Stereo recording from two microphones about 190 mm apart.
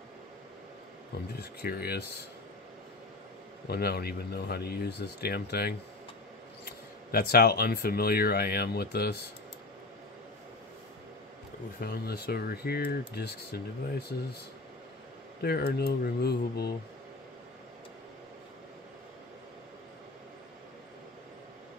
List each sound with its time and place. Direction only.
1.4 s speech: 55° left (ahead or behind)
3.6 s speech: 55° left (ahead or behind)
11.8 s speech: 55° left (ahead or behind)
15.4 s speech: 55° left (ahead or behind)